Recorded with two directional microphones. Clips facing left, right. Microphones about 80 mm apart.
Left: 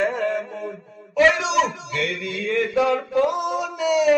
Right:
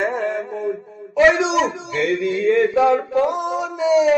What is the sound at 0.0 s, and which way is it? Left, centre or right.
Mantra, right.